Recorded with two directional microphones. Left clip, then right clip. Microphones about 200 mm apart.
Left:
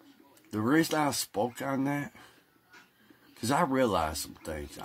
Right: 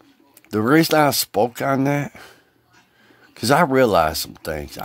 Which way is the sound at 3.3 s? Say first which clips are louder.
Right 12 dB; 50° right (ahead or behind).